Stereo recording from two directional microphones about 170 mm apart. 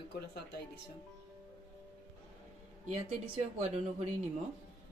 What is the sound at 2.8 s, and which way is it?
Speech, 45° right (ahead or behind).